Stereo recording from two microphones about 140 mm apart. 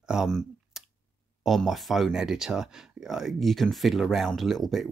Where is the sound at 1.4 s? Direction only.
Centre (ahead or behind).